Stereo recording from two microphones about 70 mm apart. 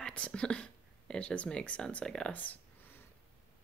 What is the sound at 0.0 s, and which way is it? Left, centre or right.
Speech, centre.